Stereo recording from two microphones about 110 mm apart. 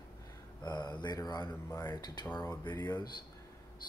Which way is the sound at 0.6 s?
40° left (ahead or behind).